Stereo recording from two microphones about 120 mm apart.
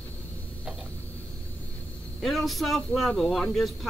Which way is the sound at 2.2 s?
Centre (ahead or behind).